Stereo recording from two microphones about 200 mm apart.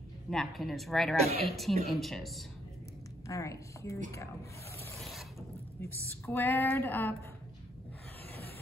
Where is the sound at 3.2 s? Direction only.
15° left (ahead or behind).